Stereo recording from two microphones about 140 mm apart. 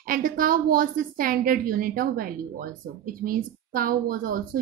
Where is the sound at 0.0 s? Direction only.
80° right.